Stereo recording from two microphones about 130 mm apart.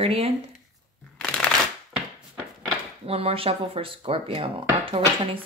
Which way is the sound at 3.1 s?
50° right (ahead or behind).